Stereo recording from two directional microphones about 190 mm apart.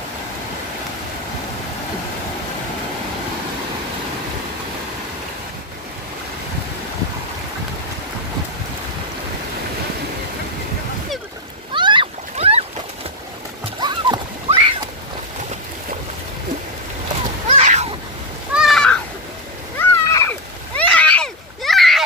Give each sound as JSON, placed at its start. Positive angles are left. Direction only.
{"t": 11.7, "sound": "splash", "side_deg": -25}
{"t": 13.7, "sound": "splash", "side_deg": -25}
{"t": 17.5, "sound": "boat", "side_deg": -35}
{"t": 18.5, "sound": "a sound", "side_deg": 0}
{"t": 19.8, "sound": "splash", "side_deg": 15}